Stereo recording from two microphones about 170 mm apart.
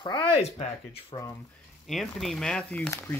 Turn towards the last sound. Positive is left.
turn(degrees=10)  # may be behind; listen again after turning